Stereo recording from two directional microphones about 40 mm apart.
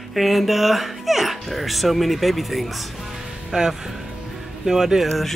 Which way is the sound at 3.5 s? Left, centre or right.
Centre.